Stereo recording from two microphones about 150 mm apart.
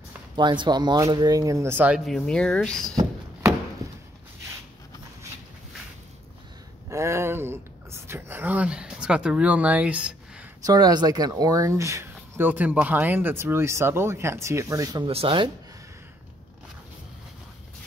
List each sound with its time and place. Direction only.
0.4 s speech: 30° right (ahead or behind); by 2.0 s 15° right (ahead or behind)
2.0 s speech: centre (ahead or behind)
6.9 s speech: 20° right (ahead or behind)
10.6 s speech: 25° right (ahead or behind)
15.0 s speech: 40° right (ahead or behind)